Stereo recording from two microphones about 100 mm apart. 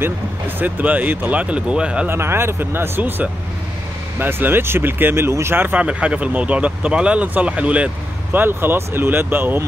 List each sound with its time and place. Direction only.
0.6 s speech: 15° right (ahead or behind)
2.0 s speech: 25° right (ahead or behind)